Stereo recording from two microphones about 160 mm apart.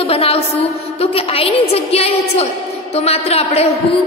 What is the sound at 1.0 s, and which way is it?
A woman's voice, 35° left (ahead or behind).